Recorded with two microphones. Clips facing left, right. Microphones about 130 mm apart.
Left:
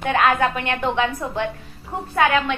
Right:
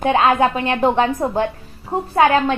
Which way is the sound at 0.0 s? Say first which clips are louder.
Right 4 dB; 25° right (ahead or behind).